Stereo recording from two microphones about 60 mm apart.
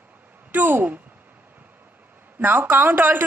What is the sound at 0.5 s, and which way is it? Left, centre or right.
Speech, right.